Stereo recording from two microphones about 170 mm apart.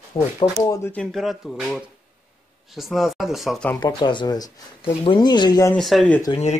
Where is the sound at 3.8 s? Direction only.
25° left (ahead or behind).